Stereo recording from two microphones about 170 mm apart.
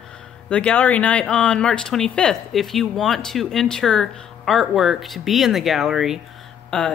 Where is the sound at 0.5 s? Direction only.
5° left (ahead or behind).